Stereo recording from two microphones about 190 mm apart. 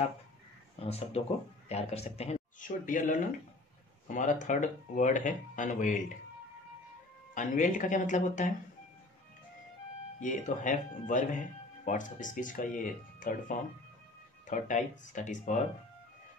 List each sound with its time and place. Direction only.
0.7 s speech: 30° left (ahead or behind)
7.3 s speech: 40° left (ahead or behind)
10.2 s speech: 40° left (ahead or behind)